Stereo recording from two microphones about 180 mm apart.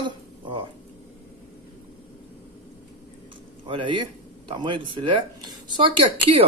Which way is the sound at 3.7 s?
25° right (ahead or behind).